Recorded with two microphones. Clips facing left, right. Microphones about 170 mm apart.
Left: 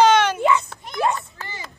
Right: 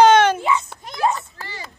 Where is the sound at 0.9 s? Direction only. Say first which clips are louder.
Right 1 dB; centre (ahead or behind).